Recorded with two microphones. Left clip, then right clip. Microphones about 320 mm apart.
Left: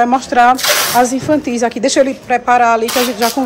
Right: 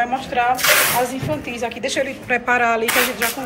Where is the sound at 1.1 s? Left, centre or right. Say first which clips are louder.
Left 10 dB; left.